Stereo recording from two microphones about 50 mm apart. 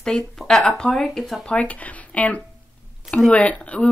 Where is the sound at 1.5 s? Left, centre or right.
Left.